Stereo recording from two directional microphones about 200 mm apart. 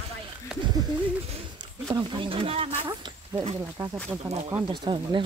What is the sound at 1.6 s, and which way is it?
Speech, 20° right (ahead or behind).